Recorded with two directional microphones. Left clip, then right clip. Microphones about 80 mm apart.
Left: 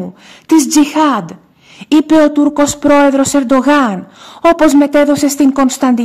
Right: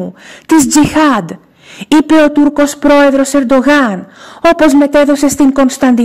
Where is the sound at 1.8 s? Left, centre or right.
Right.